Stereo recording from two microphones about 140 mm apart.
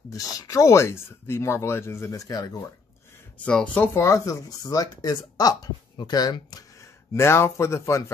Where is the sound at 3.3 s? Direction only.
10° left (ahead or behind).